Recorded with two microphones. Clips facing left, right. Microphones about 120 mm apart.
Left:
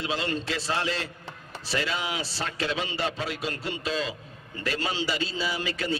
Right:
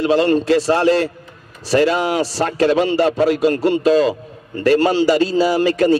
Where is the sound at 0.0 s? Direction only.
45° right (ahead or behind).